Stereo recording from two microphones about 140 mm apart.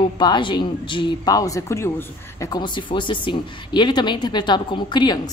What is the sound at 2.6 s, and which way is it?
Speech, 35° left (ahead or behind).